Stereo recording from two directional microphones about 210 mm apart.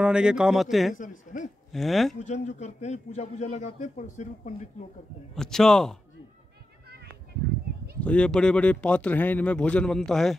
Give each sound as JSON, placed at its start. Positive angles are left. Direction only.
{"t": 0.0, "sound": "speech", "side_deg": -5}
{"t": 1.3, "sound": "a sound", "side_deg": 35}
{"t": 1.7, "sound": "speech", "side_deg": 0}
{"t": 2.1, "sound": "a man's voice", "side_deg": 35}
{"t": 5.3, "sound": "speech", "side_deg": 0}
{"t": 8.0, "sound": "speech", "side_deg": 5}